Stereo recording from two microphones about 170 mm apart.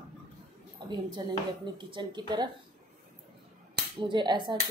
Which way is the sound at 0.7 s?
25° right (ahead or behind).